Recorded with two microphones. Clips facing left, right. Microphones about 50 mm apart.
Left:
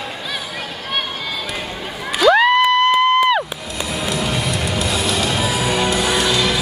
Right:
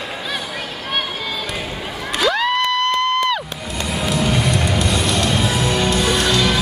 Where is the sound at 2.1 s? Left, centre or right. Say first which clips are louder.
Left 6 dB; centre.